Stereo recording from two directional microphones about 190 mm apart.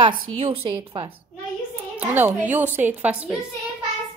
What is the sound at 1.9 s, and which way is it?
A woman's voice, 10° right (ahead or behind).